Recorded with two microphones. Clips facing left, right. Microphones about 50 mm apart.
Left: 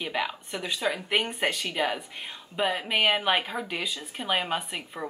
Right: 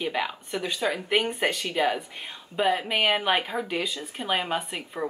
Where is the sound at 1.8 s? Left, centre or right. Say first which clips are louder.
Right 5 dB; centre.